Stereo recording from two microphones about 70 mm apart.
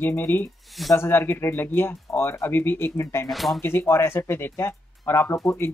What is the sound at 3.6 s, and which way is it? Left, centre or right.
Speech, left.